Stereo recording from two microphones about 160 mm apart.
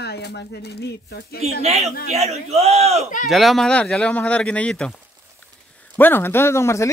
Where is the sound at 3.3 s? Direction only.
Centre (ahead or behind).